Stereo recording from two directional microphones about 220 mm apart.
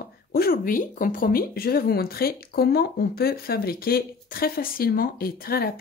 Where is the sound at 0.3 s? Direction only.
40° left (ahead or behind).